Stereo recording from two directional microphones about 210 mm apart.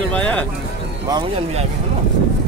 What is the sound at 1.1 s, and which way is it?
Speech, 20° right (ahead or behind).